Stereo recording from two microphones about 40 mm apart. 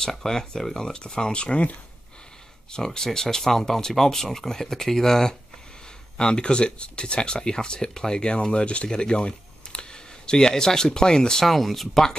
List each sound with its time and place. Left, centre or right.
0.0 s speech: centre; by 1.8 s left
2.7 s speech: centre
6.1 s speech: left
11.4 s speech: centre